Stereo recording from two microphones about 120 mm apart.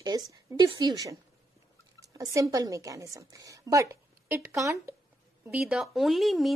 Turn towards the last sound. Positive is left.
turn(degrees=0)  # may be behind; listen again after turning